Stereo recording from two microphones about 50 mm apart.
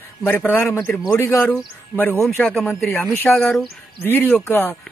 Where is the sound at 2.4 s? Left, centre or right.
Left.